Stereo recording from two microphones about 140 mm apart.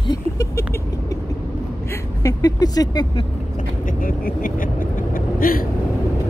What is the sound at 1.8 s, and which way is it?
Vehicle, 25° left (ahead or behind).